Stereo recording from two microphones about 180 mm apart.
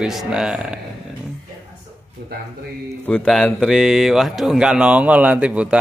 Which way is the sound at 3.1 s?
5° left (ahead or behind).